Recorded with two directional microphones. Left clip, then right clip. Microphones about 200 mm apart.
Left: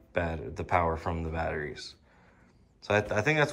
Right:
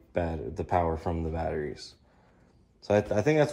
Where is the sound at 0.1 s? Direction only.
20° right (ahead or behind).